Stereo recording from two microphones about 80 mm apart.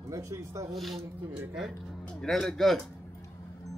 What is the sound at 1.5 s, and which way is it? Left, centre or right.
Speech, centre.